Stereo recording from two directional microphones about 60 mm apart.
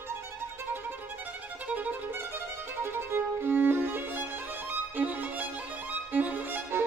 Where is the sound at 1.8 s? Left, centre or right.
Right.